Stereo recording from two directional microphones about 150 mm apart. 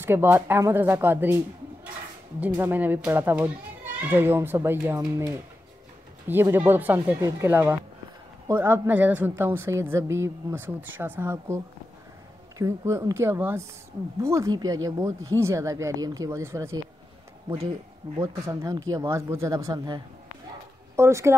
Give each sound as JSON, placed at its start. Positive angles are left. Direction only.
{"t": 0.0, "sound": "a woman's voice", "side_deg": -15}
{"t": 2.4, "sound": "a woman's voice", "side_deg": -10}
{"t": 18.2, "sound": "speech", "side_deg": -20}